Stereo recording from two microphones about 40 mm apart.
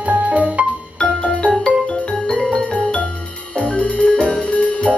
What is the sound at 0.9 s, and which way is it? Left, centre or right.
Music, left.